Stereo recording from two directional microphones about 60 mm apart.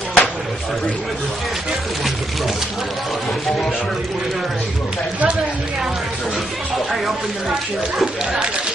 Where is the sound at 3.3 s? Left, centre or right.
Centre.